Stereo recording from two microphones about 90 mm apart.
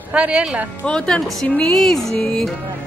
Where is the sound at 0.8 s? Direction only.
10° left (ahead or behind).